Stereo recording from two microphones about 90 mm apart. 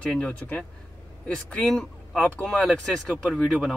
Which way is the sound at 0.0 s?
10° left (ahead or behind).